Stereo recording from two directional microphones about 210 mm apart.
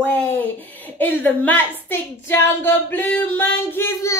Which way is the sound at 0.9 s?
10° left (ahead or behind).